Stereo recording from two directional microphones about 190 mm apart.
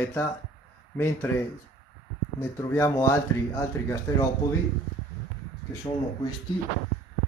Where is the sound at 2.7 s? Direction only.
15° left (ahead or behind).